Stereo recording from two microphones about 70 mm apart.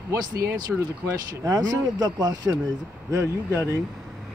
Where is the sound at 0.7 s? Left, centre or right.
Centre.